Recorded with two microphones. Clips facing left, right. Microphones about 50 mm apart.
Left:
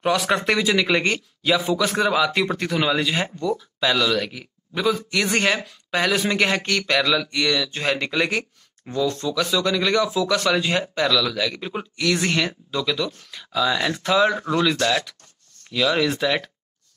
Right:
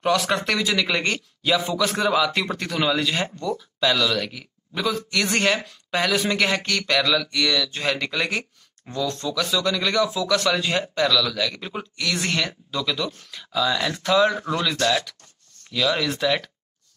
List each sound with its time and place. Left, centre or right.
0.0 s speech: centre